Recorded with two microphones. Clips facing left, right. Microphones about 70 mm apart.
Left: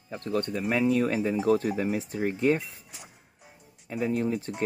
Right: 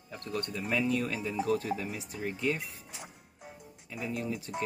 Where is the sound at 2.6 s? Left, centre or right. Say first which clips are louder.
Right 1 dB; right.